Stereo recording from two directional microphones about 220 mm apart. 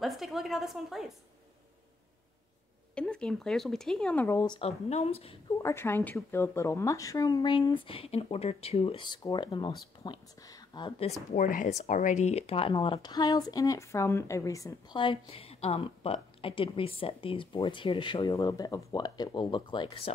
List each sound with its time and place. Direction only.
0.0 s speech: centre (ahead or behind)
2.9 s speech: 5° left (ahead or behind); by 5.4 s 25° left (ahead or behind)
5.6 s speech: 10° left (ahead or behind)